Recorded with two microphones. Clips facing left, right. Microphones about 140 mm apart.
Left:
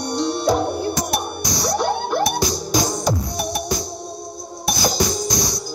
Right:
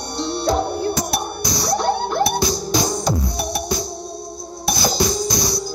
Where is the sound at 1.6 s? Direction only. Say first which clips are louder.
Right 1 dB; 15° left (ahead or behind).